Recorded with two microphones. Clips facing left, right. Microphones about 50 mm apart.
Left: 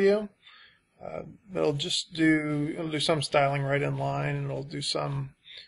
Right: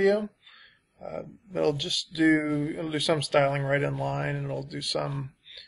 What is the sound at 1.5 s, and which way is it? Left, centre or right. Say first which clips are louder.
Speech: right 1 dB; centre.